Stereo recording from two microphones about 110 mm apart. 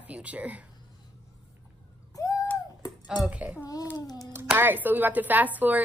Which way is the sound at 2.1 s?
30° left (ahead or behind).